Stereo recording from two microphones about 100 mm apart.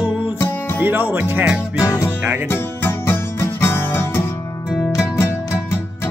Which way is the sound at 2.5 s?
20° left (ahead or behind).